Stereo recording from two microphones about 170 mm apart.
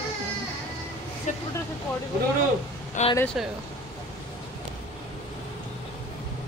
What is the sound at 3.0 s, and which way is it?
Speech, 45° left (ahead or behind).